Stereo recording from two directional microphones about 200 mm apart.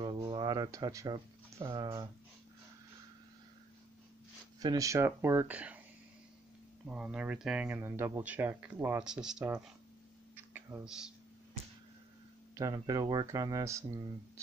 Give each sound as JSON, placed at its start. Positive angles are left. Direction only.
{"t": 0.0, "sound": "speech", "side_deg": -20}
{"t": 4.6, "sound": "speech", "side_deg": -20}
{"t": 6.9, "sound": "speech", "side_deg": -5}
{"t": 10.3, "sound": "a sound", "side_deg": -10}
{"t": 12.5, "sound": "speech", "side_deg": -15}